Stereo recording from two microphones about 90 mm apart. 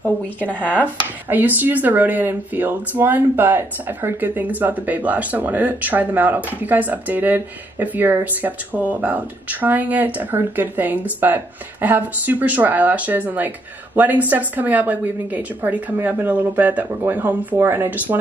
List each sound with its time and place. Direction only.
0.0 s speech: 20° left (ahead or behind)
1.3 s speech: 20° right (ahead or behind)